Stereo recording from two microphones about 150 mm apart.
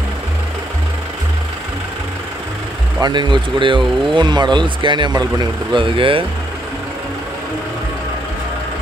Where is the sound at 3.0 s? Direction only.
30° right (ahead or behind).